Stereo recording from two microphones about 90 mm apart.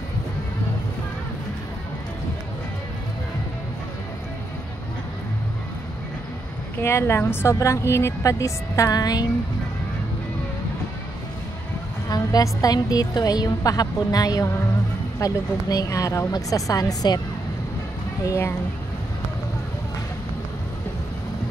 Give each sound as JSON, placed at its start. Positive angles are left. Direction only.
{"t": 6.8, "sound": "speech", "side_deg": 30}
{"t": 12.1, "sound": "a woman's voice", "side_deg": 45}
{"t": 18.2, "sound": "speech", "side_deg": 30}